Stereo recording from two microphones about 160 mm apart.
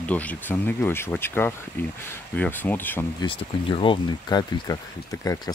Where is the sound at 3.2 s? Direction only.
30° left (ahead or behind).